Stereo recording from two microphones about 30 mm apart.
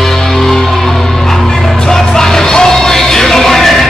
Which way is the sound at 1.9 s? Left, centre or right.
Centre.